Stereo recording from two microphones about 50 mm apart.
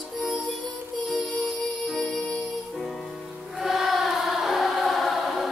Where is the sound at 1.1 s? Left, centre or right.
Left.